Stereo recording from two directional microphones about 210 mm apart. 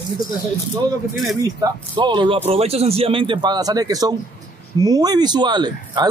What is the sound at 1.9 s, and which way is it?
Speech, 20° right (ahead or behind).